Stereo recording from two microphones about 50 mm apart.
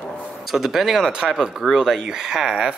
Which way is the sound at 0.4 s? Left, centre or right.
Centre.